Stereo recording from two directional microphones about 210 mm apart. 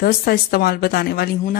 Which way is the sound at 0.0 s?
45° left (ahead or behind).